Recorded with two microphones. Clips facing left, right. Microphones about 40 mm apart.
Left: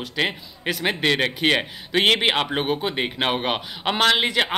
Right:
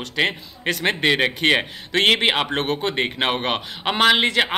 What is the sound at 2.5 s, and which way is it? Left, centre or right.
Speech, centre.